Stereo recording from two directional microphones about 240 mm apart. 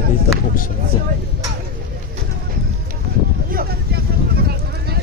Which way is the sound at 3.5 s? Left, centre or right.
Right.